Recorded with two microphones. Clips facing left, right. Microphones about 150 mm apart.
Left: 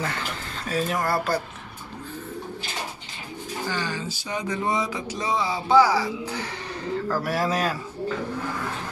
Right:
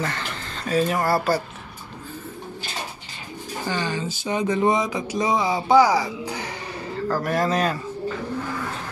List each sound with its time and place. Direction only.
0.7 s speech: centre (ahead or behind)
3.6 s a sound: 20° right (ahead or behind)
7.1 s speech: 5° left (ahead or behind)